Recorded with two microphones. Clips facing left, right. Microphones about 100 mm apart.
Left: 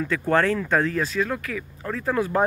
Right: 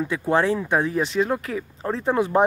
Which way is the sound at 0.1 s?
15° right (ahead or behind).